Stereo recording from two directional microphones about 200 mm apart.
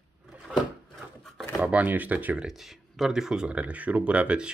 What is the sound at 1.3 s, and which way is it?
Speech, centre (ahead or behind).